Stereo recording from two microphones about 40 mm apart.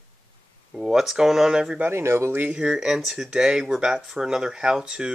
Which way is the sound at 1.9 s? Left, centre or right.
Right.